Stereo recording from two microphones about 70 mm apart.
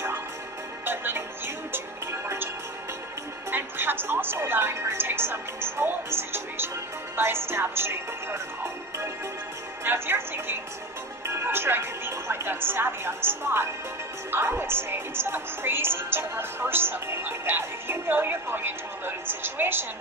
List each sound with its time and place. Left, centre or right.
0.8 s music: right
3.4 s a woman's voice: right
9.8 s a woman's voice: right